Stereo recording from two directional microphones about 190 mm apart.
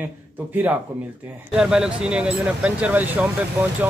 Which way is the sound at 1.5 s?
5° right (ahead or behind).